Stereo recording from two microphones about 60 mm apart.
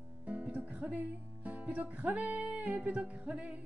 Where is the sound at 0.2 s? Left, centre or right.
Right.